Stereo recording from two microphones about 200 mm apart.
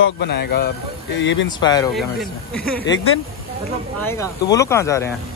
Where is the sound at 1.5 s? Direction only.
20° left (ahead or behind).